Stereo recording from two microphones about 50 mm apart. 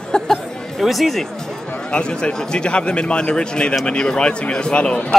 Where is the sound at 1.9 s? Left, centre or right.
Centre.